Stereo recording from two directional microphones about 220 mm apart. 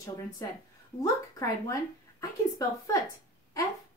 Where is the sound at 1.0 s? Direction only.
15° left (ahead or behind).